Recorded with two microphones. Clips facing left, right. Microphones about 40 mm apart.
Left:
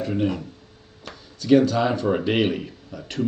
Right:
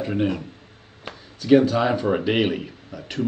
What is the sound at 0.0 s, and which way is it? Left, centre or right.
Speech, centre.